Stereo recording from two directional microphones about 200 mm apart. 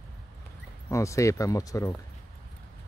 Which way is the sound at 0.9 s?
15° left (ahead or behind).